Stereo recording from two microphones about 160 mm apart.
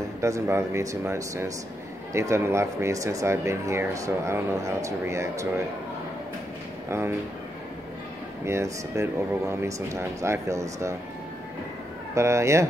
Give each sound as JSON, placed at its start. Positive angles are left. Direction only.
{"t": 0.2, "sound": "speech", "side_deg": -20}
{"t": 6.9, "sound": "speech", "side_deg": -15}
{"t": 8.5, "sound": "speech", "side_deg": -20}
{"t": 12.1, "sound": "speech", "side_deg": -20}